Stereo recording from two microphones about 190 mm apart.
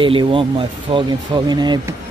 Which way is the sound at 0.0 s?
25° right (ahead or behind).